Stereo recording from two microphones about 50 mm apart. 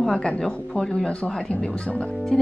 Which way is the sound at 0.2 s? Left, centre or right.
Centre.